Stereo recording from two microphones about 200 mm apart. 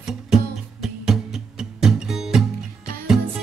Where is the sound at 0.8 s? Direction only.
Centre (ahead or behind).